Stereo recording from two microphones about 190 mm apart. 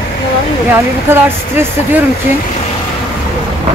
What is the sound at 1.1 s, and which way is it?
Speech, 10° right (ahead or behind).